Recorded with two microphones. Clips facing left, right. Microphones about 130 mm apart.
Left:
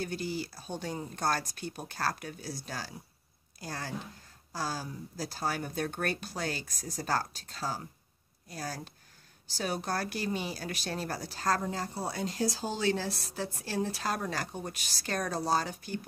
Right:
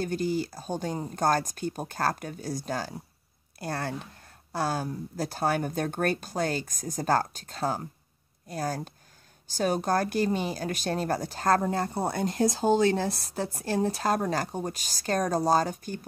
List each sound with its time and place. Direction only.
0.0 s a woman's voice: 50° right (ahead or behind)
3.5 s a woman's voice: 60° right (ahead or behind)